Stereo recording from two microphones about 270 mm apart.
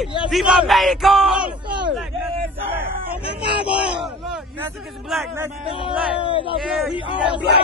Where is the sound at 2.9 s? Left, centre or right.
Right.